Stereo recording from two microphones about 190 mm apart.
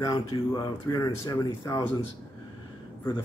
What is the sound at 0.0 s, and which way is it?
Speech, 20° left (ahead or behind).